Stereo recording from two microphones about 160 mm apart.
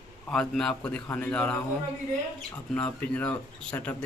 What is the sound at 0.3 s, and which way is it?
A man's voice, 5° left (ahead or behind).